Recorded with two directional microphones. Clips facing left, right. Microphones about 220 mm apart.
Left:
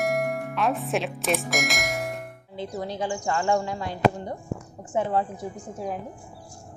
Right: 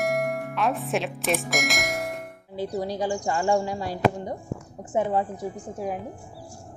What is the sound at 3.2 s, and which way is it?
Speech, 10° right (ahead or behind).